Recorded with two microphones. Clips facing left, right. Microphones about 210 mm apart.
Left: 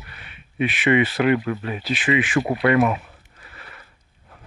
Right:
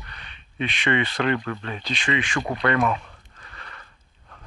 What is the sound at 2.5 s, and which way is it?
Speech, 25° left (ahead or behind).